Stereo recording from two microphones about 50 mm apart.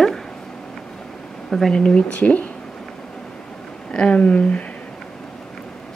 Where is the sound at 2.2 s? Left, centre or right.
Left.